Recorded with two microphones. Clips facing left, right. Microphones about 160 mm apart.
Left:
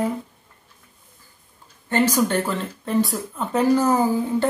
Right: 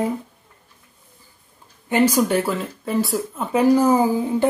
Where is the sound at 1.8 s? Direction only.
10° right (ahead or behind).